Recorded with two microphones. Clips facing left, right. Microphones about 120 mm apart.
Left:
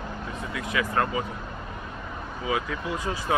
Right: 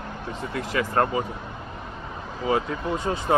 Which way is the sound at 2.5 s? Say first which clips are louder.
Right 4 dB; 30° right (ahead or behind).